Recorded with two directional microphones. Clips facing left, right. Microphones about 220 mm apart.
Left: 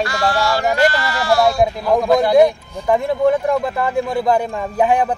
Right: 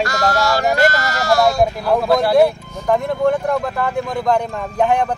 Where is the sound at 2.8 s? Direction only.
Centre (ahead or behind).